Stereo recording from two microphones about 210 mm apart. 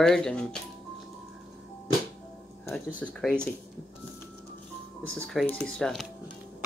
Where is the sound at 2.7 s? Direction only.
5° right (ahead or behind).